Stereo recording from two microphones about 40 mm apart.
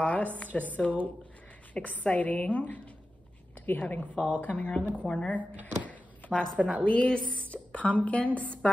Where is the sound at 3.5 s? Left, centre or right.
Left.